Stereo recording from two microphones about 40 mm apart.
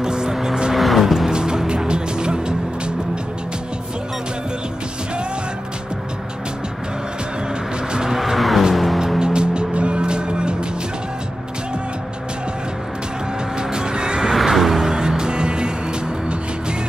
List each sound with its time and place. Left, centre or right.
0.0 s vehicle: centre
0.7 s music: centre
1.3 s music: centre
7.9 s vehicle: centre
8.2 s vehicle: centre
8.7 s music: centre
9.2 s music: right
13.6 s music: centre
14.3 s music: centre
14.9 s music: centre